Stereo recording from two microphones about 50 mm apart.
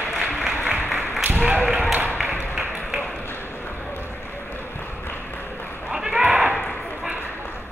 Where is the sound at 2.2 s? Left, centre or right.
Centre.